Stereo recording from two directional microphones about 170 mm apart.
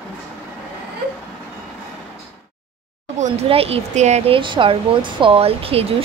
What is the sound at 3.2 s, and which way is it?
A woman's voice, 35° right (ahead or behind).